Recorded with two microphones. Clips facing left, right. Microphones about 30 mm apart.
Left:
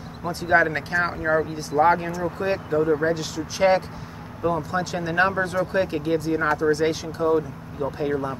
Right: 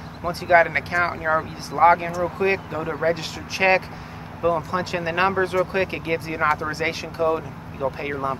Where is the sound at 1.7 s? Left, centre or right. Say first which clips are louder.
Right 3 dB; right.